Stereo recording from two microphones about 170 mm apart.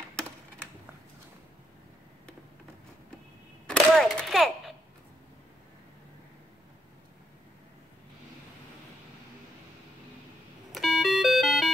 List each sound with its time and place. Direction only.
0.1 s typing: 5° left (ahead or behind)
3.6 s a sound: centre (ahead or behind)
10.7 s doorbell: centre (ahead or behind)